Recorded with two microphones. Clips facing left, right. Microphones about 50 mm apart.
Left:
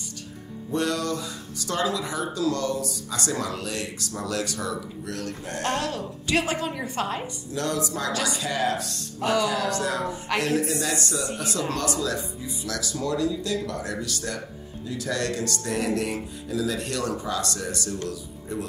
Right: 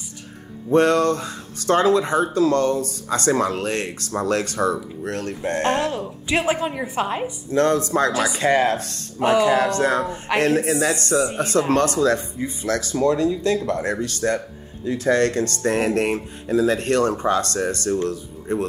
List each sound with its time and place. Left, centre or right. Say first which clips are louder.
0.7 s a woman's voice: right 10 dB; right
7.5 s speech: right 9 dB; right
8.1 s a woman's voice: right 5 dB; right
8.4 s speech: right 8 dB; right
10.0 s a woman's voice: right 4 dB; right
10.4 s speech: right 8 dB; right